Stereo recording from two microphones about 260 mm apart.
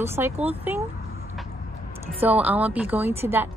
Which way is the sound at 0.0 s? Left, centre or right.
Centre.